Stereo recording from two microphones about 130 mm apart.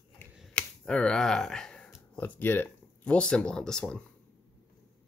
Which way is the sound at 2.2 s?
15° left (ahead or behind).